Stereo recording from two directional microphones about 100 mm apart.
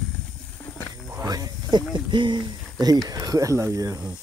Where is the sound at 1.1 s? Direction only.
40° right (ahead or behind).